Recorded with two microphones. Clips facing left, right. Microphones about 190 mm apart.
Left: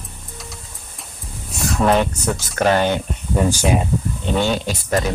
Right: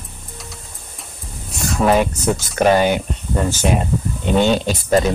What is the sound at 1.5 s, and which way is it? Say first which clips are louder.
Speech: right 1 dB; centre (ahead or behind).